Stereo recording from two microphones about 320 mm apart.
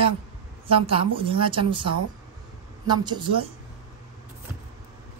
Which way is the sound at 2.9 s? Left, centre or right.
Centre.